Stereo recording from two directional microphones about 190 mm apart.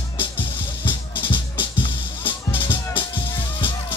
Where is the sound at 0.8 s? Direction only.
25° left (ahead or behind).